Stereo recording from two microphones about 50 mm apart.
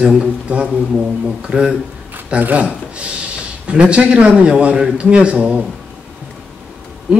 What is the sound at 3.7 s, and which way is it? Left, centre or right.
Speech, right.